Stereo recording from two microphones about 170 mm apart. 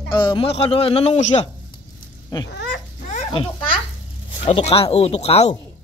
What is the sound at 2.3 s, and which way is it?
Speech, 20° left (ahead or behind).